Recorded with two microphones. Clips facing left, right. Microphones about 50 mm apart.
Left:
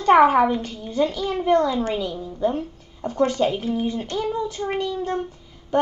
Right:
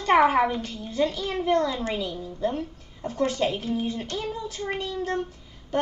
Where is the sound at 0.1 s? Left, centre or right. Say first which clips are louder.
Left 5 dB; left.